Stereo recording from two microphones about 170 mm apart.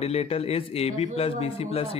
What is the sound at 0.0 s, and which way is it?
Speech, 35° left (ahead or behind).